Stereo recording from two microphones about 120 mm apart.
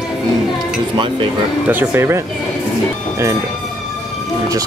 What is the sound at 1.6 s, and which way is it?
Speech, 20° right (ahead or behind).